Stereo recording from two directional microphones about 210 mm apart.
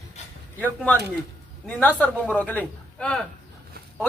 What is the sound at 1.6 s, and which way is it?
Speech, 5° left (ahead or behind).